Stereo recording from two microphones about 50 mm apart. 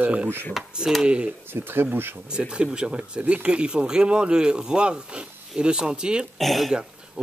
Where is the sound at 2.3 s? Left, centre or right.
Centre.